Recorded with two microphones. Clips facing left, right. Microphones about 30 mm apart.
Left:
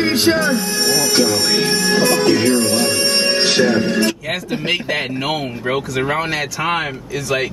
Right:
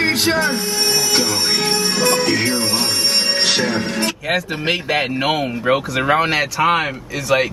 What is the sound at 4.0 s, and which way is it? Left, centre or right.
Speech, centre.